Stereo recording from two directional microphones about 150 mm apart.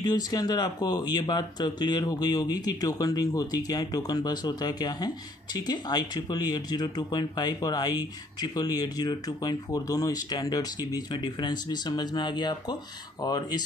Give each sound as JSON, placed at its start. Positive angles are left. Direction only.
{"t": 0.0, "sound": "speech", "side_deg": 25}